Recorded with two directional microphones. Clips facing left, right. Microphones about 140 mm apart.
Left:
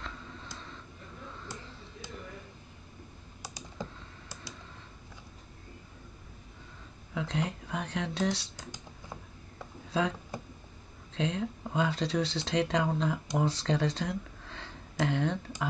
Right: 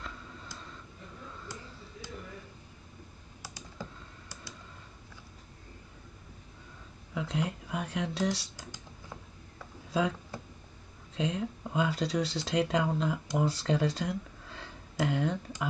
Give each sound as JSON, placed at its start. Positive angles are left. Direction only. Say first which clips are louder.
{"t": 3.4, "sound": "computer keyboard", "louder": "left 3 dB", "side_deg": 15}
{"t": 7.2, "sound": "speech", "louder": "even", "side_deg": -5}
{"t": 8.5, "sound": "computer keyboard", "louder": "left 1 dB", "side_deg": 20}
{"t": 10.3, "sound": "a sound", "louder": "left 2 dB", "side_deg": 15}
{"t": 11.1, "sound": "speech", "louder": "even", "side_deg": -5}